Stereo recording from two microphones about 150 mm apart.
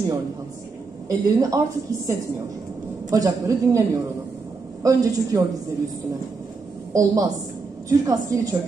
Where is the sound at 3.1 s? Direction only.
25° right (ahead or behind).